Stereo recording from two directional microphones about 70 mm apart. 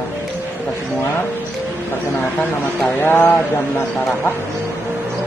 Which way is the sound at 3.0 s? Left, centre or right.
Left.